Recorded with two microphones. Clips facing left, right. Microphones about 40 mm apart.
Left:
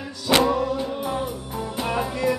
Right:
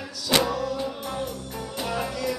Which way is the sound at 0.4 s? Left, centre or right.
Left.